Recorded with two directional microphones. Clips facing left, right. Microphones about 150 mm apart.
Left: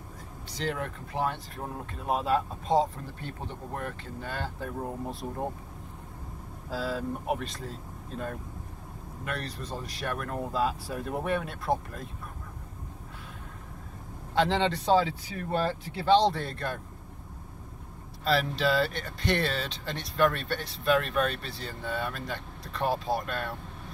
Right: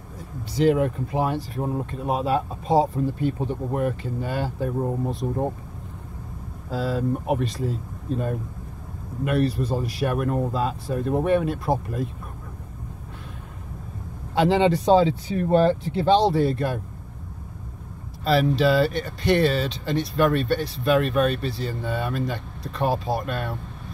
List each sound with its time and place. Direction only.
0.6 s speech: 15° right (ahead or behind)
6.7 s speech: centre (ahead or behind)
9.2 s speech: 10° right (ahead or behind)
10.5 s speech: centre (ahead or behind)
14.3 s speech: 10° right (ahead or behind)
15.0 s speech: 25° right (ahead or behind)
16.2 s speech: 5° right (ahead or behind)
18.2 s speech: 10° right (ahead or behind)